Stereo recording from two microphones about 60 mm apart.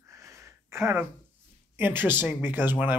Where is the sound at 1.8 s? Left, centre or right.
Right.